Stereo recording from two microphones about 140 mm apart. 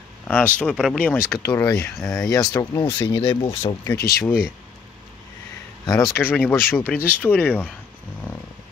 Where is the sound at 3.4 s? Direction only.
40° left (ahead or behind).